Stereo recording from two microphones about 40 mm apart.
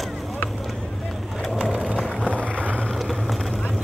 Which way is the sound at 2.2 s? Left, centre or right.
Left.